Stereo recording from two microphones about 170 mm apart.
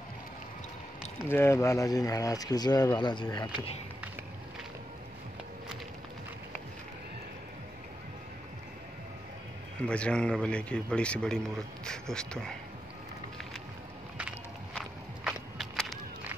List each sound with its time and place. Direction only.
1.3 s speech: 15° left (ahead or behind)
9.8 s a man's voice: 5° left (ahead or behind)
15.2 s a sound: centre (ahead or behind)